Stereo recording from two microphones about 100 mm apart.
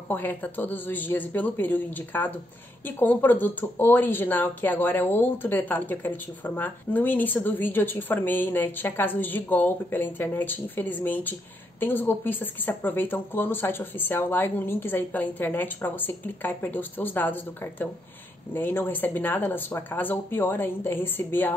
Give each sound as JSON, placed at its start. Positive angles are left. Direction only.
{"t": 0.1, "sound": "speech", "side_deg": 20}